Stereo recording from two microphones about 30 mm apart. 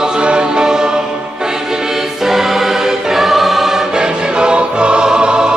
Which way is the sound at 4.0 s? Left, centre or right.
Right.